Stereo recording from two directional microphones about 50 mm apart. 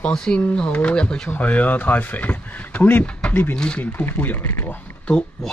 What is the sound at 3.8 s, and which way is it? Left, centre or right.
Speech, left.